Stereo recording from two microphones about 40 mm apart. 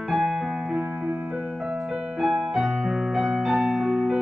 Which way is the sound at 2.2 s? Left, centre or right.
Centre.